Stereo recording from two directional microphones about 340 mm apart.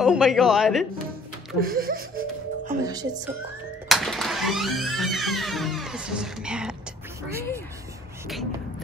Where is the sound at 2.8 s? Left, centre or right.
Centre.